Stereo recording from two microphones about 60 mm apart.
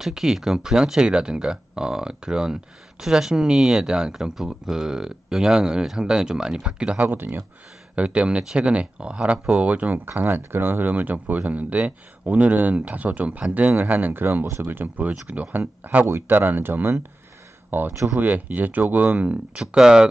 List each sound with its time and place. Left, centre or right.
0.0 s speech: centre
7.0 s speech: right
7.9 s speech: centre
10.0 s speech: right
16.1 s speech: right
19.6 s speech: centre